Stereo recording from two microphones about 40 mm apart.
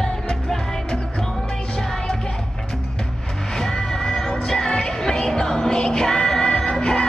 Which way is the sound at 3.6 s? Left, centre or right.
Centre.